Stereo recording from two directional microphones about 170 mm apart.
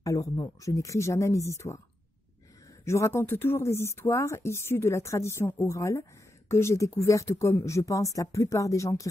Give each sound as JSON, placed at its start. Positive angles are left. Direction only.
{"t": 0.0, "sound": "speech", "side_deg": 20}
{"t": 2.8, "sound": "speech", "side_deg": 15}